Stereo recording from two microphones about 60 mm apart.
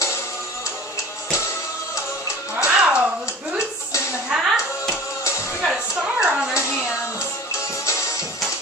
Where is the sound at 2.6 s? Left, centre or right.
Centre.